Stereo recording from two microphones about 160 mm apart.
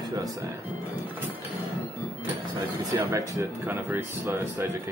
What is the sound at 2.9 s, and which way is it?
Speech, 20° right (ahead or behind).